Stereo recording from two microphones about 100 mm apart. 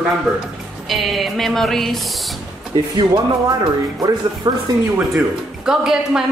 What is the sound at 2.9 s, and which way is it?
Speech, 35° right (ahead or behind).